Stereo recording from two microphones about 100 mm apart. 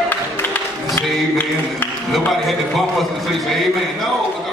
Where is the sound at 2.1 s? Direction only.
Centre (ahead or behind).